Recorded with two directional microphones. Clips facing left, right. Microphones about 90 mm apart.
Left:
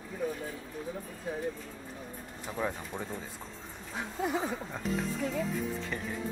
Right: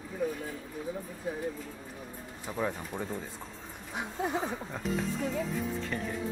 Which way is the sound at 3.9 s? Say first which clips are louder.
Even; 20° right (ahead or behind).